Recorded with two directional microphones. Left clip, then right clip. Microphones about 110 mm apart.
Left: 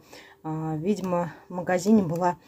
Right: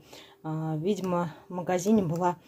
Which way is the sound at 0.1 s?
Centre (ahead or behind).